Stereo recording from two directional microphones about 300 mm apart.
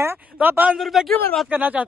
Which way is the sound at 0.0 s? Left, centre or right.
Centre.